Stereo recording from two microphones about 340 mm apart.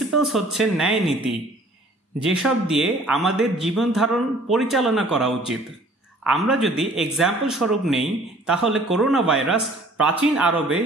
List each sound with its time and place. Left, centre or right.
0.1 s speech: centre
2.2 s speech: centre